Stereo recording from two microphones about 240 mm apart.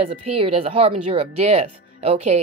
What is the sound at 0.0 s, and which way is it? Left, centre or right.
Speech, right.